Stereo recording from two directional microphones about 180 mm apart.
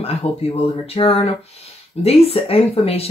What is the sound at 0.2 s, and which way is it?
Speech, 35° left (ahead or behind).